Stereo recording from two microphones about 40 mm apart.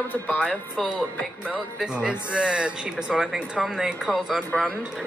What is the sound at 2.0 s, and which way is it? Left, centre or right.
Speech, right.